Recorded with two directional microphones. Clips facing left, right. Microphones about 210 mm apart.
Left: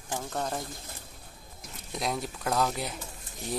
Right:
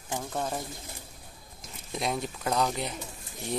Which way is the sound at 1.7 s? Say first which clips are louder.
Right 1 dB; centre (ahead or behind).